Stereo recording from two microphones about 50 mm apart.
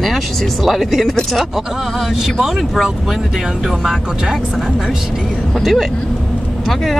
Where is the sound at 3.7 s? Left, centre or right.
Centre.